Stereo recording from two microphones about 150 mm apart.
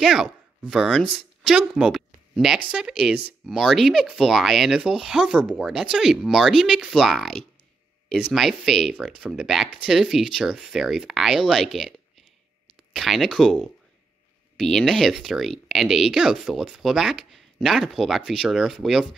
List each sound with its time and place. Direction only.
0.0 s speech: centre (ahead or behind)